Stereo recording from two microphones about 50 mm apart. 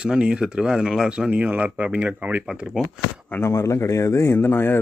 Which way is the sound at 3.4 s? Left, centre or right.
Left.